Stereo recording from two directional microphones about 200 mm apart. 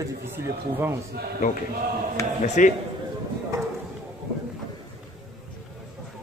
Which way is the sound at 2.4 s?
35° left (ahead or behind).